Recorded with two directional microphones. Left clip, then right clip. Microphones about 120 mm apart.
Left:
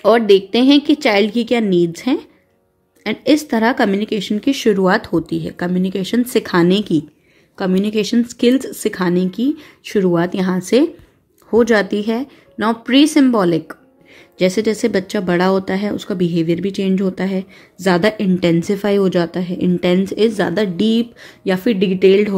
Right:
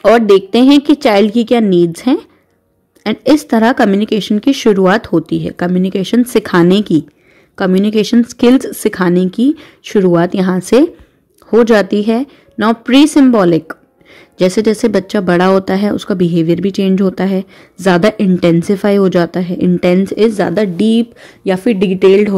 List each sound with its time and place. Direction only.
0.0 s a woman's voice: 30° right (ahead or behind)